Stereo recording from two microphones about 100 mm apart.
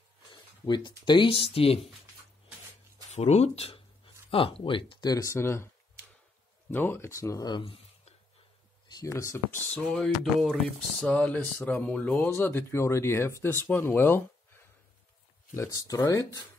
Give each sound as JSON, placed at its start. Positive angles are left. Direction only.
{"t": 0.3, "sound": "speech", "side_deg": 50}
{"t": 3.2, "sound": "speech", "side_deg": 90}
{"t": 4.3, "sound": "speech", "side_deg": 65}
{"t": 5.0, "sound": "speech", "side_deg": 35}
{"t": 6.7, "sound": "speech", "side_deg": 20}
{"t": 7.4, "sound": "speech", "side_deg": 50}
{"t": 9.0, "sound": "speech", "side_deg": 30}
{"t": 9.9, "sound": "speech", "side_deg": 0}
{"t": 11.1, "sound": "speech", "side_deg": 15}
{"t": 15.5, "sound": "speech", "side_deg": 30}